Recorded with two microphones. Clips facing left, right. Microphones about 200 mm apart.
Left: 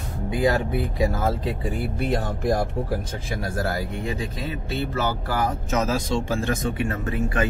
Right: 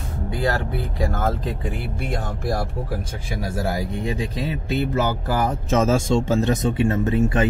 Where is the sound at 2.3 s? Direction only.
20° left (ahead or behind).